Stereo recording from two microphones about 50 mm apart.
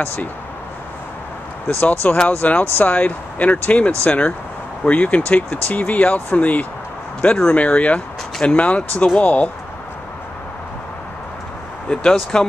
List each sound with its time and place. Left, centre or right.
0.0 s speech: left
2.0 s speech: left
11.9 s speech: centre